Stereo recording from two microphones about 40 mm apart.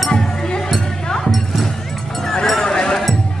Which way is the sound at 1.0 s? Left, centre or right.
Centre.